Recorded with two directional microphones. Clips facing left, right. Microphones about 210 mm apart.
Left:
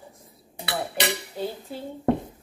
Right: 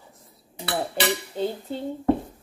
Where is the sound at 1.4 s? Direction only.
25° right (ahead or behind).